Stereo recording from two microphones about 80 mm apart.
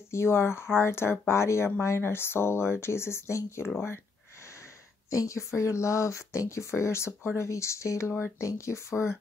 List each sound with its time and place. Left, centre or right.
0.1 s speech: left
5.1 s speech: left